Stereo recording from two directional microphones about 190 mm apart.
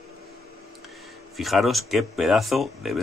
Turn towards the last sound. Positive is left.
turn(degrees=0)  # may be behind; listen again after turning